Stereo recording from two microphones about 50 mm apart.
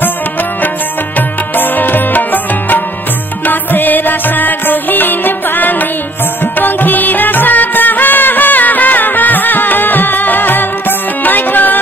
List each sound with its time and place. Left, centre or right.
1.6 s music: left